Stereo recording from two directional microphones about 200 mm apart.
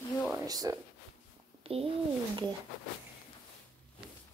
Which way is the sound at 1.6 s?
30° right (ahead or behind).